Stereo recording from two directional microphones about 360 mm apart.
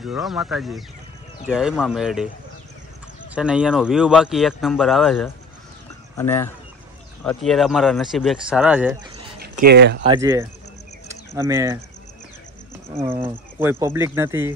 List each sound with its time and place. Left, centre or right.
0.0 s speech: centre
3.3 s speech: centre
9.4 s speech: right
10.0 s speech: centre
12.9 s speech: centre